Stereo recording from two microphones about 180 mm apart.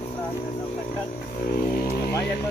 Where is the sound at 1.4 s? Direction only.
50° left (ahead or behind).